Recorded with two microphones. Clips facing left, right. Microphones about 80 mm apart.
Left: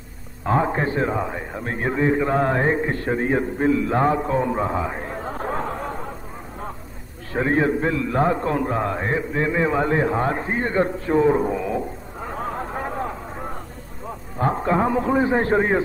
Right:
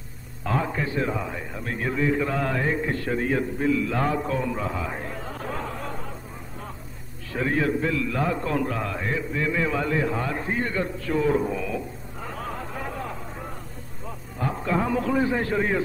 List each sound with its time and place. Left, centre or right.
0.5 s a man's voice: left
7.3 s a man's voice: left
14.4 s a man's voice: left